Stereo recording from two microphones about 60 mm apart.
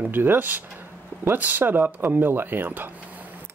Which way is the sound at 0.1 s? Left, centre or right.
Right.